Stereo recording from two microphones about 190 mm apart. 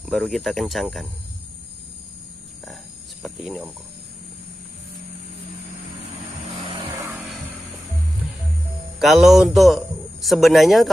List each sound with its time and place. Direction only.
0.0 s a man's voice: centre (ahead or behind)
2.6 s speech: centre (ahead or behind)
6.7 s vehicle: 25° right (ahead or behind)
9.0 s a man's voice: centre (ahead or behind)